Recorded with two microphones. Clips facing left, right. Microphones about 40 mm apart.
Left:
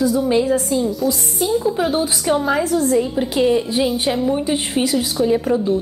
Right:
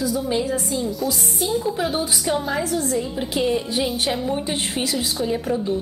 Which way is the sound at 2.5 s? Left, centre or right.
Centre.